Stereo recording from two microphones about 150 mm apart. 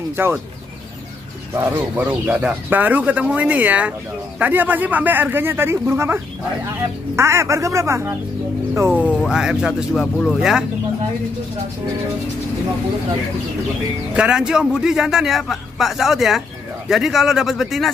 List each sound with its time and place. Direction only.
0.2 s speech: 15° right (ahead or behind)
1.5 s a man's voice: 15° right (ahead or behind)
14.1 s a man's voice: 5° right (ahead or behind)